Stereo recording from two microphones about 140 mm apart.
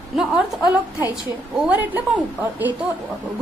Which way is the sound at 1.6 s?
10° right (ahead or behind).